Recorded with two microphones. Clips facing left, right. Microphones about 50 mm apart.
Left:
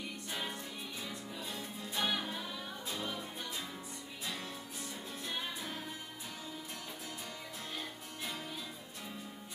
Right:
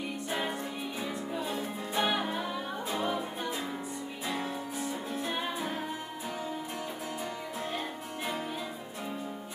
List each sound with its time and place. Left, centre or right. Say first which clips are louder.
0.3 s music: right 8 dB; right